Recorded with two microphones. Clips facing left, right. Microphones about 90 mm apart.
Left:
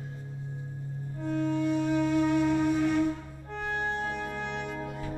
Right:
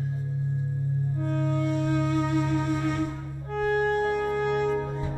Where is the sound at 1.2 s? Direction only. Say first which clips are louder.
Left 2 dB; centre (ahead or behind).